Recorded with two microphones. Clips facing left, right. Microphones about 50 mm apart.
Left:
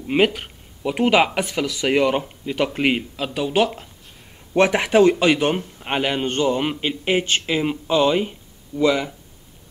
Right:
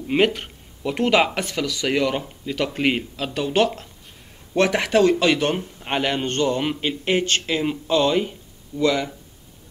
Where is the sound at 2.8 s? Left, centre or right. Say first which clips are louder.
Left 1 dB; centre.